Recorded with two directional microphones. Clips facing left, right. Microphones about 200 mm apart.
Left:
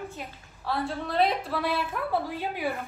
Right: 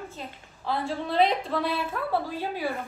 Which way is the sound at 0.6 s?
Centre (ahead or behind).